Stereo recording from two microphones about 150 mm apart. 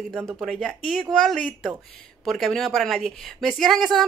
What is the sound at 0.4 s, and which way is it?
Speech, centre (ahead or behind).